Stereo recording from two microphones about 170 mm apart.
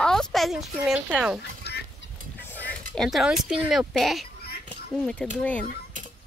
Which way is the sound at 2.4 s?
10° left (ahead or behind).